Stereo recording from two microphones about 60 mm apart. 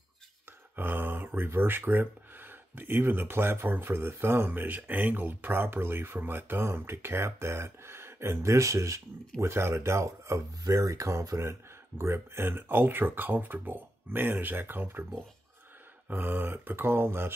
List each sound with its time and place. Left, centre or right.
0.7 s speech: right
9.4 s speech: right
16.1 s speech: right